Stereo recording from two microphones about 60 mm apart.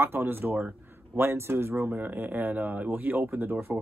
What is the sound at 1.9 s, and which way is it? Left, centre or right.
Speech, right.